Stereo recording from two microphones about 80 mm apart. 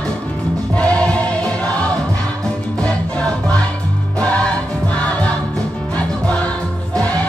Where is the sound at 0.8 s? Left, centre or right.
Centre.